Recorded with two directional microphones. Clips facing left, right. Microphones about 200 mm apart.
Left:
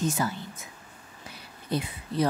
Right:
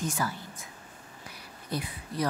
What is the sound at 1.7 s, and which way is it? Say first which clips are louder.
Speech: left 5 dB; 25° left (ahead or behind).